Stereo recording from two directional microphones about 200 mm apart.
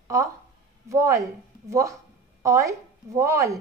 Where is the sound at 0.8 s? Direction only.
15° right (ahead or behind).